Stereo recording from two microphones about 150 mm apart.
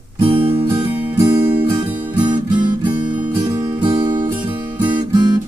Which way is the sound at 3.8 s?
30° right (ahead or behind).